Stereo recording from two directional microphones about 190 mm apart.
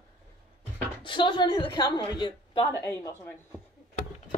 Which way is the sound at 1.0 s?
25° left (ahead or behind).